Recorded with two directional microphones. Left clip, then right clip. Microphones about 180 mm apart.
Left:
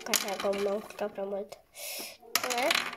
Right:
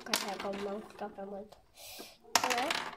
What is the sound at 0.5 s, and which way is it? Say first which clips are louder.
Speech: left 8 dB; 20° left (ahead or behind).